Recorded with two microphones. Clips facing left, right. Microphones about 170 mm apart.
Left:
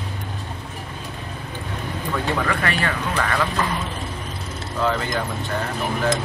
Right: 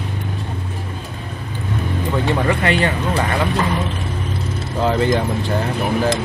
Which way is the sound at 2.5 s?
25° right (ahead or behind).